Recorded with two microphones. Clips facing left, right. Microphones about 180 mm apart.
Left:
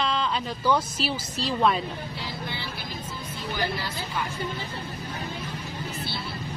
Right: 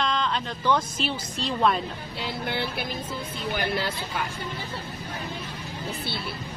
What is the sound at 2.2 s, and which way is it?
Speech, 60° right (ahead or behind).